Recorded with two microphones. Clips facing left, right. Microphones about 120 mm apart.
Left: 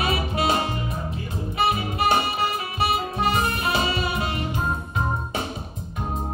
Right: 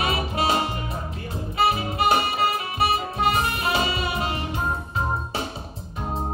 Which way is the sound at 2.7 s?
30° left (ahead or behind).